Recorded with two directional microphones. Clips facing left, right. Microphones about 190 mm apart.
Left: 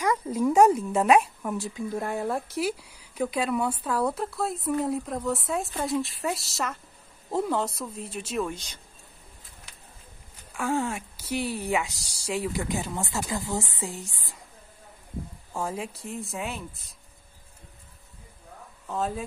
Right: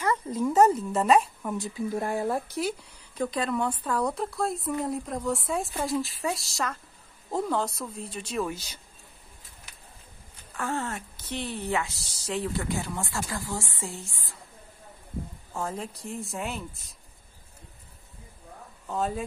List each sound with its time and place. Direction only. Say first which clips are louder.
0.0 s speech: left 2 dB; 10° left (ahead or behind); by 8.7 s 5° right (ahead or behind)
10.5 s speech: left 4 dB; 10° left (ahead or behind)
15.5 s speech: left 2 dB; 10° left (ahead or behind)
18.9 s speech: even; centre (ahead or behind)